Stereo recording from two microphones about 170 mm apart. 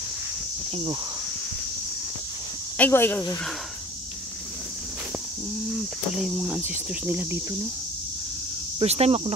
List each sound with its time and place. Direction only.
2.8 s speech: 10° left (ahead or behind)
6.1 s cricket: 5° right (ahead or behind)
8.7 s cricket: 35° right (ahead or behind)